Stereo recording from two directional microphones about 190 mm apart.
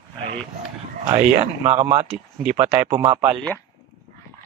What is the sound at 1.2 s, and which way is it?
Speech, 5° right (ahead or behind).